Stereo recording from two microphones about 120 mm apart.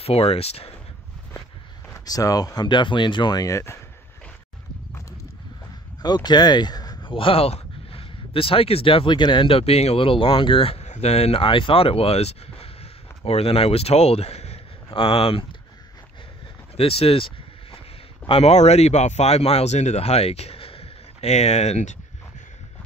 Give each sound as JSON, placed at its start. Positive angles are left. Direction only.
{"t": 0.0, "sound": "speech", "side_deg": 55}
{"t": 2.0, "sound": "speech", "side_deg": 30}
{"t": 6.0, "sound": "speech", "side_deg": 35}
{"t": 16.7, "sound": "a sound", "side_deg": 55}
{"t": 18.2, "sound": "speech", "side_deg": 55}